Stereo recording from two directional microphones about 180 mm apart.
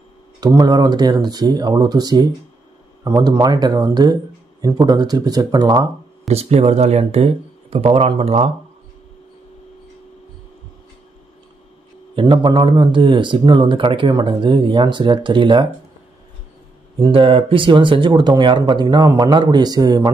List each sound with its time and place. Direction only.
0.6 s speech: 25° right (ahead or behind)
6.2 s speech: 35° right (ahead or behind)
12.2 s speech: 25° right (ahead or behind)
17.0 s speech: 30° right (ahead or behind)